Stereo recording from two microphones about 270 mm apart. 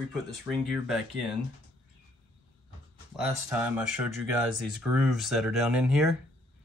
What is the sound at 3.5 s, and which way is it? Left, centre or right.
Speech, centre.